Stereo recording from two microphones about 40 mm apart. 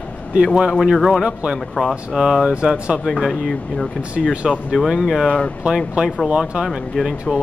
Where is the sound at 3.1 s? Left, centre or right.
Centre.